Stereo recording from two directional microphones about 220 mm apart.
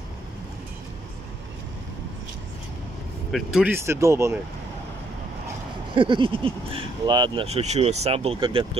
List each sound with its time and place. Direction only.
3.3 s speech: centre (ahead or behind)
5.9 s speech: 20° right (ahead or behind)